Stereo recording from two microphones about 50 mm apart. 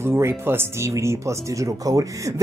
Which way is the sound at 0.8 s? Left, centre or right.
Right.